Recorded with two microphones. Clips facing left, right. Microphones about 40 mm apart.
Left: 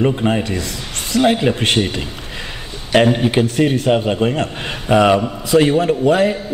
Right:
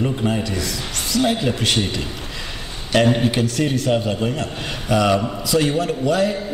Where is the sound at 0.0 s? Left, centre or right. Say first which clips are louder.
Left 5 dB; left.